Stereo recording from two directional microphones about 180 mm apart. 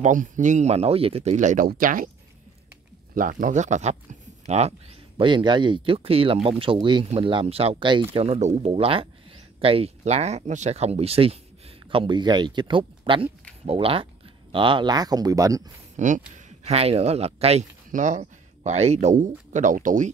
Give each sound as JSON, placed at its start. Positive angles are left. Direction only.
{"t": 0.0, "sound": "speech", "side_deg": -45}
{"t": 3.2, "sound": "speech", "side_deg": -45}
{"t": 16.0, "sound": "speech", "side_deg": -40}